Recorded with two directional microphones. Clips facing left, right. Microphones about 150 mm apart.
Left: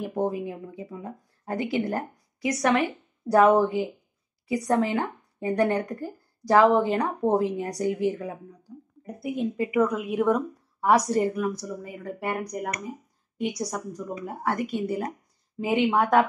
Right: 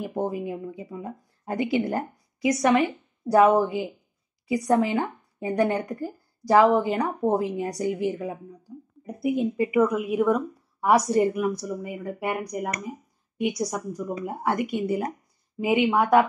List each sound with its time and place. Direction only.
0.0 s a woman's voice: 10° right (ahead or behind)
8.7 s a sound: 10° right (ahead or behind)
9.4 s speech: 10° right (ahead or behind)